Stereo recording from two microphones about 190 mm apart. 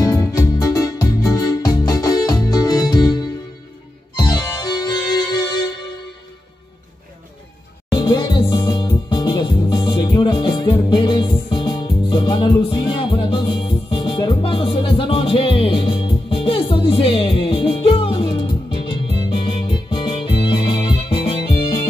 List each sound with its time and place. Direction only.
0.3 s music: 20° left (ahead or behind)
7.9 s music: 25° left (ahead or behind)